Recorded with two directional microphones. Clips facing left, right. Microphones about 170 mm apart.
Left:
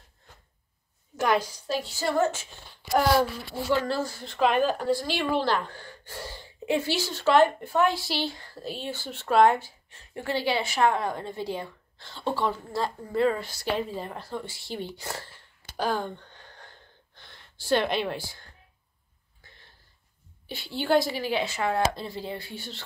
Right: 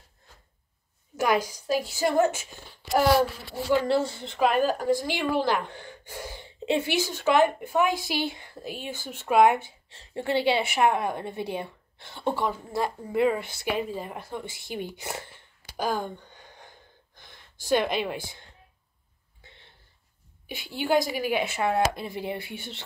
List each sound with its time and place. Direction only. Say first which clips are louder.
1.1 s a woman's voice: even; 10° right (ahead or behind)
2.8 s a sound: right 1 dB; centre (ahead or behind)
3.7 s a woman's voice: right 4 dB; 25° right (ahead or behind)
4.4 s a woman's voice: even; 5° right (ahead or behind)
15.7 s gasp: even; 10° right (ahead or behind)
20.4 s a woman's voice: even; 15° right (ahead or behind)